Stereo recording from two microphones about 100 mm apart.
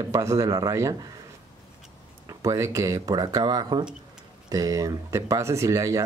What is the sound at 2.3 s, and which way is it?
Speech, 30° right (ahead or behind).